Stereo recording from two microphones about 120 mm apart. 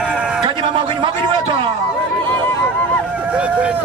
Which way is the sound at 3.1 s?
10° right (ahead or behind).